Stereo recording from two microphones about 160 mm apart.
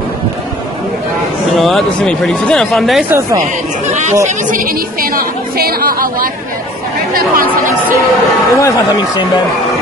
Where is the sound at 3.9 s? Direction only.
45° right (ahead or behind).